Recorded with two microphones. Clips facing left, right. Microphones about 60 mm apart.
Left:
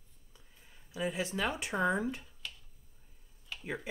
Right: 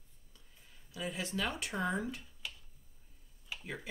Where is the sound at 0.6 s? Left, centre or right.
Centre.